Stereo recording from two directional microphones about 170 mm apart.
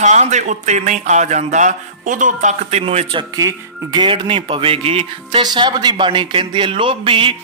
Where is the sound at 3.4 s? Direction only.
25° right (ahead or behind).